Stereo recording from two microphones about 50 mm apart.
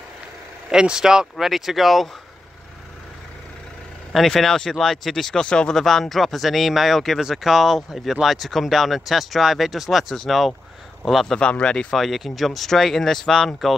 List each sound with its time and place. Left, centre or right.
0.7 s speech: centre
4.1 s speech: centre
11.3 s speech: centre
11.9 s speech: centre